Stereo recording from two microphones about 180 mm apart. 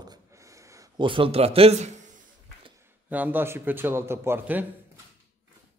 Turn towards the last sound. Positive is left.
turn(degrees=-10)  # may be behind; listen again after turning